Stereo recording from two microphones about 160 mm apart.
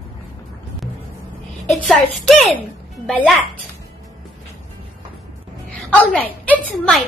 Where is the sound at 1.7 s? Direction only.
Centre (ahead or behind).